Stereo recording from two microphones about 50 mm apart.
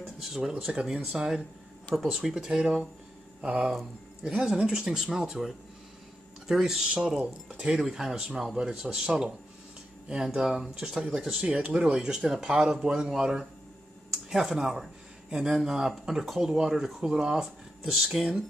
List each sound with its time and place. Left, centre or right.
0.0 s a sound: centre
0.5 s speech: centre
11.5 s speech: centre